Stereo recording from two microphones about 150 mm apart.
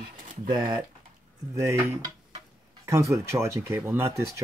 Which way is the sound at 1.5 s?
20° right (ahead or behind).